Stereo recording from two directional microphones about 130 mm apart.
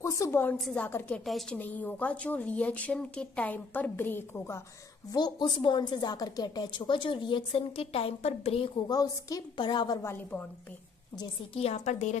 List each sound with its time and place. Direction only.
0.0 s a woman's voice: 25° left (ahead or behind)
0.6 s a woman's voice: 5° left (ahead or behind)
0.8 s a woman's voice: 15° left (ahead or behind)
5.1 s a woman's voice: 35° left (ahead or behind)
8.8 s a woman's voice: 30° left (ahead or behind)
10.0 s a woman's voice: 15° left (ahead or behind)
11.5 s a woman's voice: 55° left (ahead or behind)